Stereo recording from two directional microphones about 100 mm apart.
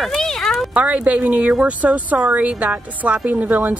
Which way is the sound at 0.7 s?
15° right (ahead or behind).